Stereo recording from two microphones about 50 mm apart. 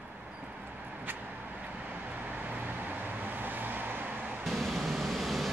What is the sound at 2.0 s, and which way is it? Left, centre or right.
Vehicle, right.